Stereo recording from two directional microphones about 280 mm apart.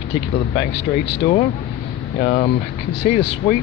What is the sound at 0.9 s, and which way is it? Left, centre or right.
Speech, left.